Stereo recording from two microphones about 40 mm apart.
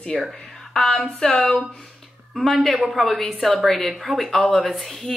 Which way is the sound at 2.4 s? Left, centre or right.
Centre.